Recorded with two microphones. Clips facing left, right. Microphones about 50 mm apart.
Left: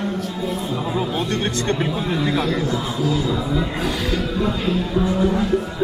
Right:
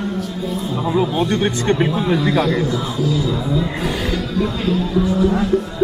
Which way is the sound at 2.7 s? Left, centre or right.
Left.